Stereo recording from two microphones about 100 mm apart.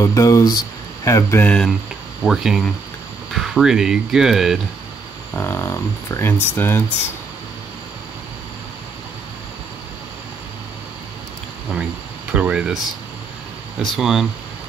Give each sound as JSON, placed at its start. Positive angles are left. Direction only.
{"t": 0.0, "sound": "speech", "side_deg": 30}
{"t": 1.4, "sound": "speech", "side_deg": 10}
{"t": 2.2, "sound": "speech", "side_deg": -5}
{"t": 5.3, "sound": "speech", "side_deg": 25}
{"t": 11.7, "sound": "speech", "side_deg": -10}
{"t": 13.9, "sound": "speech", "side_deg": -5}